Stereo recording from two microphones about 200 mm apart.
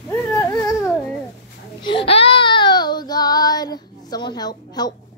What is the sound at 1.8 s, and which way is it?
Child singing, 25° left (ahead or behind).